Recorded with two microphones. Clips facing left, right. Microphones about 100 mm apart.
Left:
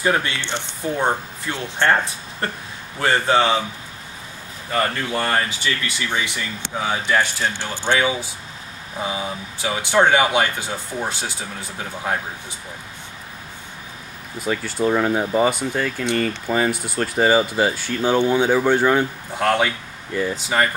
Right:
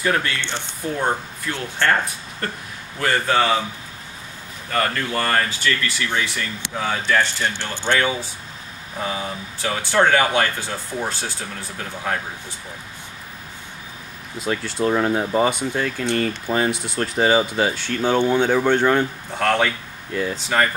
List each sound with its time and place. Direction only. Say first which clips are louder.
0.0 s speech: left 1 dB; 20° left (ahead or behind)
3.0 s speech: left 2 dB; 25° left (ahead or behind)
4.7 s speech: even; 15° left (ahead or behind)
14.4 s speech: left 1 dB; 10° left (ahead or behind)
16.7 s speech: left 1 dB; 50° left (ahead or behind)
17.0 s speech: left 1 dB; centre (ahead or behind)